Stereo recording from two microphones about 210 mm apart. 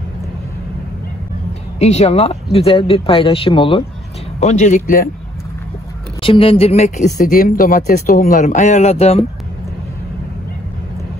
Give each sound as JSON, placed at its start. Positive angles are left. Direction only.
{"t": 1.8, "sound": "speech", "side_deg": 30}
{"t": 6.2, "sound": "speech", "side_deg": 25}